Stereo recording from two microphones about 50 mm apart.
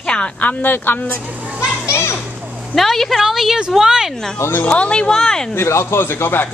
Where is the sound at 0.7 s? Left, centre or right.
Left.